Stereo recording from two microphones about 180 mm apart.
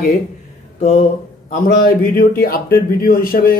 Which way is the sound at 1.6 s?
55° left (ahead or behind).